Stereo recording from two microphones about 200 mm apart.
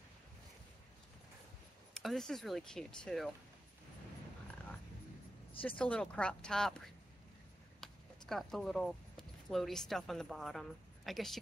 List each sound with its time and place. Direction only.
2.0 s speech: centre (ahead or behind)
5.6 s speech: 10° left (ahead or behind)